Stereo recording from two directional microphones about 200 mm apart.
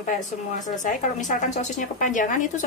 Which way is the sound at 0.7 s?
40° left (ahead or behind).